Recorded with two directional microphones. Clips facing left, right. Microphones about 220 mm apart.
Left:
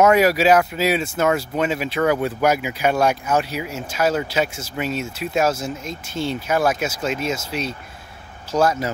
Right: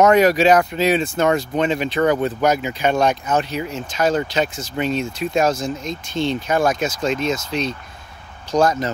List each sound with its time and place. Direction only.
0.0 s speech: 5° left (ahead or behind)